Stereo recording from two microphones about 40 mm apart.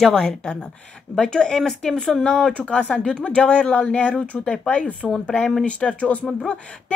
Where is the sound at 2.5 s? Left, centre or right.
Left.